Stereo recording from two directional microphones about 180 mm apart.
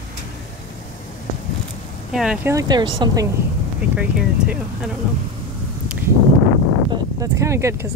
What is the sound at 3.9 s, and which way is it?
Speech, 5° right (ahead or behind).